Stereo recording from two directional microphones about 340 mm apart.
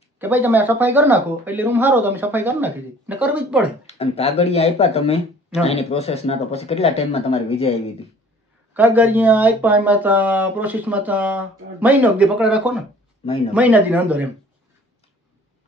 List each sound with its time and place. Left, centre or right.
0.2 s speech: centre
3.8 s speech: centre
8.7 s speech: centre